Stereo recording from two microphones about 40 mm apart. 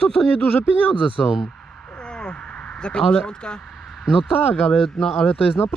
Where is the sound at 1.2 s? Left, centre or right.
Left.